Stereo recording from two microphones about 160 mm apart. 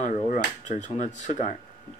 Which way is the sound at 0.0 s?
50° left (ahead or behind).